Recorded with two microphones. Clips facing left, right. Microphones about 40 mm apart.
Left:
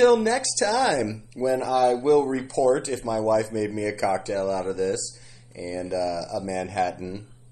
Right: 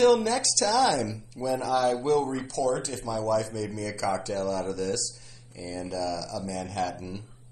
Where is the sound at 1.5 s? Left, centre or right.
Left.